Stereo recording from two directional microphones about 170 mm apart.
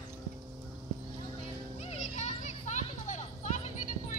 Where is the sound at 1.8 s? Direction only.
40° left (ahead or behind).